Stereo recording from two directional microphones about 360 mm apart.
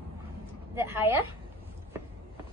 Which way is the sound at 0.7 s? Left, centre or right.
Centre.